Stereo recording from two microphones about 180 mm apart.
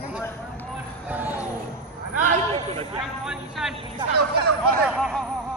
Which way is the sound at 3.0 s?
Centre (ahead or behind).